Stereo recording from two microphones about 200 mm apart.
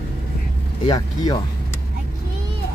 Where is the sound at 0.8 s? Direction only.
20° left (ahead or behind).